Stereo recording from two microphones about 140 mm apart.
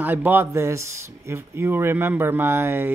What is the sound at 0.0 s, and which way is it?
Speech, 15° right (ahead or behind).